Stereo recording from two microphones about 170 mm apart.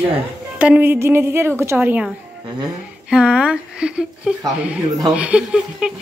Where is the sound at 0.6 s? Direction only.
10° right (ahead or behind).